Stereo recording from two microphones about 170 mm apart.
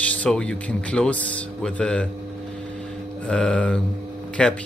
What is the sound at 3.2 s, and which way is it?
Mantra, 5° left (ahead or behind).